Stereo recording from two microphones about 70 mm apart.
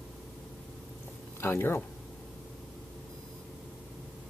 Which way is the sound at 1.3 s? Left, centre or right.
Left.